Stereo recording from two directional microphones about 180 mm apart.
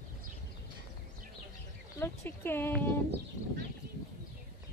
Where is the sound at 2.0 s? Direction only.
10° left (ahead or behind).